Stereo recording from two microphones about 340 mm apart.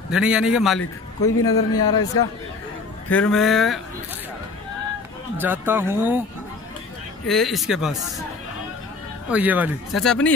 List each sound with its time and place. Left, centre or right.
0.1 s a man's voice: centre
1.4 s speech: left
3.1 s a man's voice: centre
5.4 s a man's voice: centre
7.2 s a man's voice: centre
9.3 s a man's voice: centre